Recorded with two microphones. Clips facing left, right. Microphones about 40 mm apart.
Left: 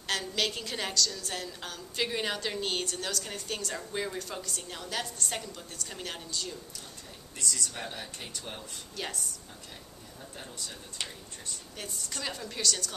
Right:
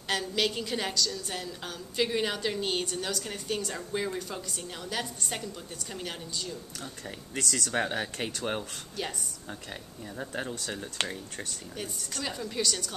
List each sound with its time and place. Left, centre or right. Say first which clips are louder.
0.1 s a woman's voice: right 2 dB; centre
7.3 s speech: right 6 dB; right
10.1 s speech: right 10 dB; right
11.7 s a woman's voice: right 1 dB; centre